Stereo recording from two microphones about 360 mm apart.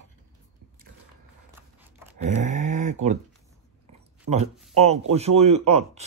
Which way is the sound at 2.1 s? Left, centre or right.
Right.